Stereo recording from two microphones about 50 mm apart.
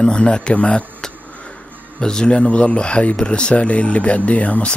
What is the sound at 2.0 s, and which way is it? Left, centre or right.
Speech, centre.